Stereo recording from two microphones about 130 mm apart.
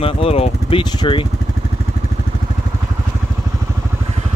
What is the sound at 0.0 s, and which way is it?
Speech, 50° left (ahead or behind).